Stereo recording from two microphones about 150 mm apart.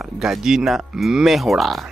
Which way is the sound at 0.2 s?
5° right (ahead or behind).